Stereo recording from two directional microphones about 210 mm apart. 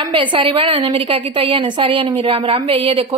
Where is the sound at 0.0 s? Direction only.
25° right (ahead or behind).